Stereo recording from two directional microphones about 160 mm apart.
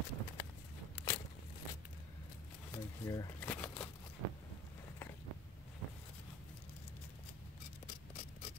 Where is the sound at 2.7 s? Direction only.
20° left (ahead or behind).